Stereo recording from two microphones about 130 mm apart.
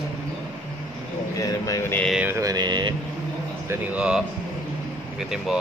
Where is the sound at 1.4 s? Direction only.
25° left (ahead or behind).